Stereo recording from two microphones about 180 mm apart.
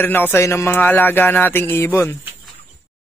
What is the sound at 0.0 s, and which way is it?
Music, 10° left (ahead or behind).